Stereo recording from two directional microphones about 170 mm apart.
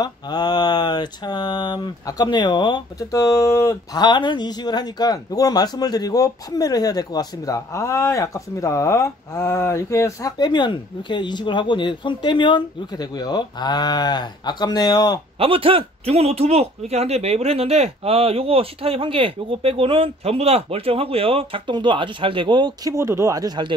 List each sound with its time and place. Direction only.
0.0 s mantra: 25° left (ahead or behind)
15.3 s a man's voice: 35° right (ahead or behind)